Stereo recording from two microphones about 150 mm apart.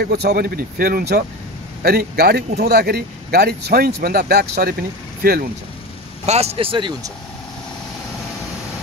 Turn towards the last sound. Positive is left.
turn(degrees=-35)  # may be behind; listen again after turning